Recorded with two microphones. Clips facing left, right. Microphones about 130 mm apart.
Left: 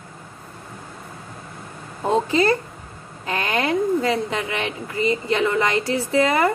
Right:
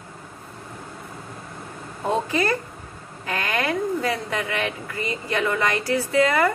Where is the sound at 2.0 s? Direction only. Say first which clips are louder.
Left 4 dB; 25° left (ahead or behind).